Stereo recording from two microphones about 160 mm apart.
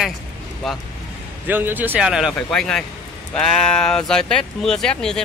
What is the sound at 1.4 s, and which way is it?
Speech, 10° right (ahead or behind).